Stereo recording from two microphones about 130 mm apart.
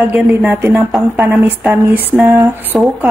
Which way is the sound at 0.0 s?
15° right (ahead or behind).